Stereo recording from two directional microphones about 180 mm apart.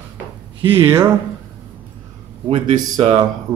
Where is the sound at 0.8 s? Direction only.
15° right (ahead or behind).